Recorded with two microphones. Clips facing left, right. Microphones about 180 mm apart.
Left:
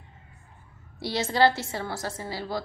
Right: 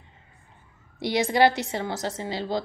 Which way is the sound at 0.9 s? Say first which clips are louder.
Right 3 dB; 15° right (ahead or behind).